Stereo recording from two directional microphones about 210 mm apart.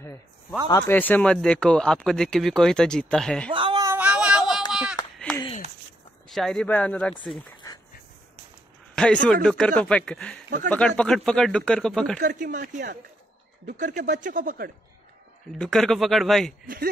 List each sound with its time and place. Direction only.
0.0 s a sound: 10° left (ahead or behind)
0.7 s speech: 15° left (ahead or behind)
3.5 s a sound: 20° right (ahead or behind); by 4.6 s 5° right (ahead or behind)
5.0 s a sound: 15° left (ahead or behind)
6.2 s speech: centre (ahead or behind)
7.5 s dog: 20° left (ahead or behind)
8.9 s speech: 5° left (ahead or behind)
12.2 s speech: 40° right (ahead or behind)
15.5 s speech: 5° left (ahead or behind)
16.6 s speech: 45° right (ahead or behind)